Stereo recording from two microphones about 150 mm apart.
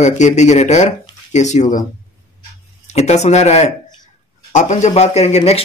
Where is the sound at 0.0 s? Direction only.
50° left (ahead or behind).